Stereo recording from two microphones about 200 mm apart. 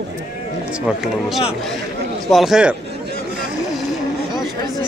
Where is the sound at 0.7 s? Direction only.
5° right (ahead or behind).